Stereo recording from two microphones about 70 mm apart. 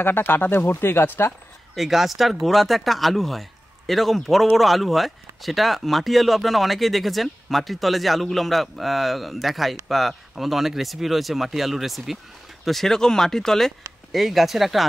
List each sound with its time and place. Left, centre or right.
0.0 s speech: left
1.8 s speech: centre